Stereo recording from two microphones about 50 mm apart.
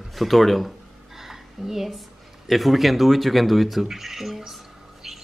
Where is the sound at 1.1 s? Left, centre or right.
Centre.